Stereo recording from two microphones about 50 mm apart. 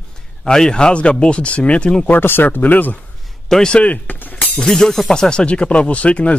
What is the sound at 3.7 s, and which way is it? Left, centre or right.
Speech, left.